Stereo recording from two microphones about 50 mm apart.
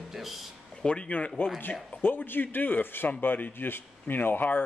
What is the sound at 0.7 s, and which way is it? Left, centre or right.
Speech, left.